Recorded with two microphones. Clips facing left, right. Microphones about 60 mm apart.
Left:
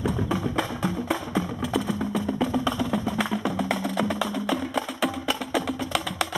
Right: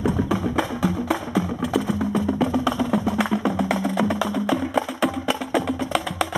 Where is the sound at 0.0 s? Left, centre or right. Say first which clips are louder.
Right 4 dB; centre.